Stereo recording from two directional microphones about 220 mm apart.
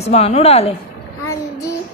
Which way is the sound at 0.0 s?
30° left (ahead or behind).